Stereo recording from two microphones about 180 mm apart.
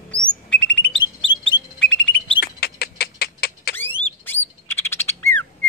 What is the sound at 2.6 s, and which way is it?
Rodents, 60° left (ahead or behind).